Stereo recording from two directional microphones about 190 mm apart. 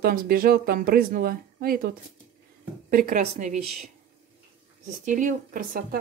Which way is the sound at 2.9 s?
45° right (ahead or behind).